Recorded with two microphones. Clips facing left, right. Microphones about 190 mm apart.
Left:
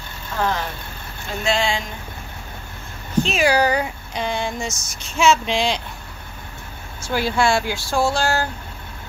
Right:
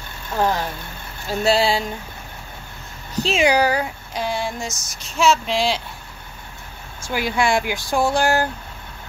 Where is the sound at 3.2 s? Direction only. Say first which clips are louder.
Right 1 dB; 25° right (ahead or behind).